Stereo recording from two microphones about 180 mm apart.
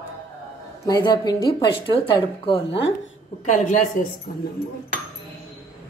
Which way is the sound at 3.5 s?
45° left (ahead or behind).